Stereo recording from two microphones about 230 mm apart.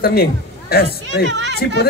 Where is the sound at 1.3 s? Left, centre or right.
Right.